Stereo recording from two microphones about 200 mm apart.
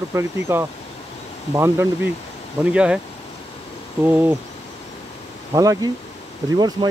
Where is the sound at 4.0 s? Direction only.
10° right (ahead or behind).